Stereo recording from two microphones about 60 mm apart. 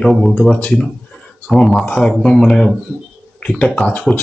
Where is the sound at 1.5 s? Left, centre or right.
Centre.